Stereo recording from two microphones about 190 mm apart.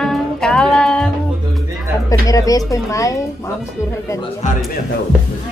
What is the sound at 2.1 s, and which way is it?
Speech, 20° left (ahead or behind).